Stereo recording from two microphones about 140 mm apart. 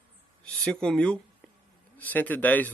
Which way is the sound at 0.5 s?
5° left (ahead or behind).